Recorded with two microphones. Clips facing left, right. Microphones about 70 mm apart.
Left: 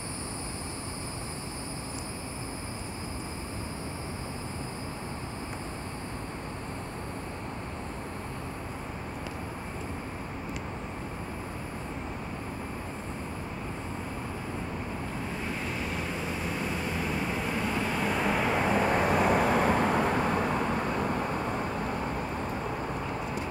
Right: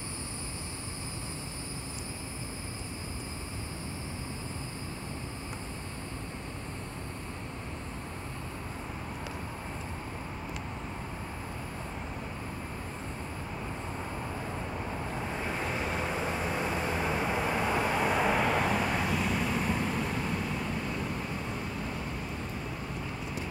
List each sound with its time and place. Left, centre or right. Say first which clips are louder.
16.3 s vehicle: right 1 dB; centre
18.5 s vehicle: left 2 dB; centre
19.0 s vehicle: left 6 dB; left